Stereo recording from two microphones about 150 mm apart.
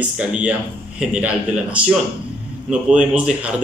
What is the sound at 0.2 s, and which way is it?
Speech, 10° right (ahead or behind).